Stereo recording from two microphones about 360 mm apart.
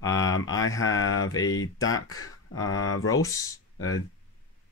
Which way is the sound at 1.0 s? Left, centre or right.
Left.